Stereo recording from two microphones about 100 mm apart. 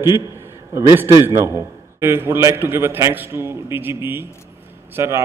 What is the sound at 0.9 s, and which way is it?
A man's voice, 25° right (ahead or behind).